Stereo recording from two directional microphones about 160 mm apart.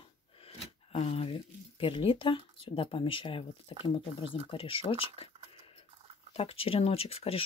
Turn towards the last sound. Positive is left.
turn(degrees=40)  # may be behind; listen again after turning